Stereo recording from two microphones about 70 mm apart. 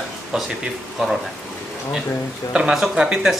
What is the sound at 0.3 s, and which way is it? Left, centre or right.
Speech, centre.